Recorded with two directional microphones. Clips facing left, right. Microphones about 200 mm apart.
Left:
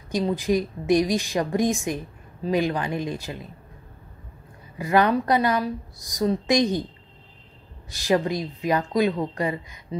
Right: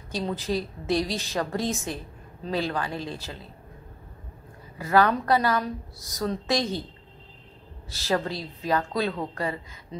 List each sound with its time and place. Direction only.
0.1 s a woman's voice: 15° left (ahead or behind)
4.7 s a woman's voice: 15° left (ahead or behind)
7.9 s a woman's voice: 15° left (ahead or behind)